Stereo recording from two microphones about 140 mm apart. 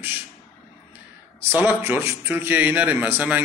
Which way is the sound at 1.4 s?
15° right (ahead or behind).